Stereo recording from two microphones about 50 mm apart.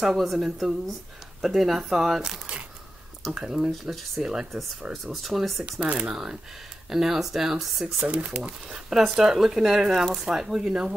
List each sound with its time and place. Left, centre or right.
0.2 s a woman's voice: centre
5.0 s a woman's voice: centre
5.7 s speech: right
6.0 s speech: centre
8.1 s speech: right
8.9 s a woman's voice: centre